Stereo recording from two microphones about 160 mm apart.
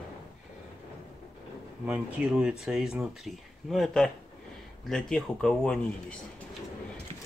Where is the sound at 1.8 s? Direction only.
5° right (ahead or behind).